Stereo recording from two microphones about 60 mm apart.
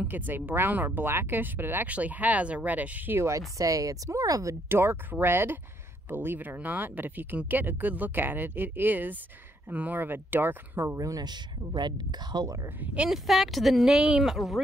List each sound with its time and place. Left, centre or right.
0.3 s speech: right
1.9 s speech: right
3.2 s speech: right
4.6 s speech: right
11.0 s speech: right
12.8 s speech: centre
13.1 s speech: centre
13.9 s speech: centre